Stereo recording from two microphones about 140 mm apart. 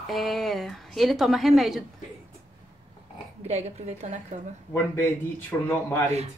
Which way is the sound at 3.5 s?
50° right (ahead or behind).